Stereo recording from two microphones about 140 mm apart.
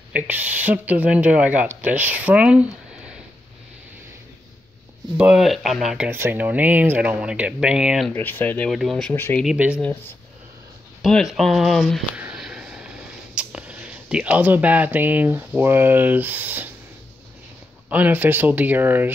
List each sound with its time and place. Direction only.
0.1 s speech: 10° right (ahead or behind)
5.1 s speech: 10° right (ahead or behind)
6.0 s speech: 15° right (ahead or behind)
8.1 s speech: 15° left (ahead or behind)
8.6 s speech: centre (ahead or behind)
9.1 s speech: 15° left (ahead or behind)
9.4 s speech: 5° right (ahead or behind)
9.8 s speech: 15° left (ahead or behind)
11.0 s speech: centre (ahead or behind)
12.1 s a sound: 10° right (ahead or behind)
17.8 s speech: 10° right (ahead or behind)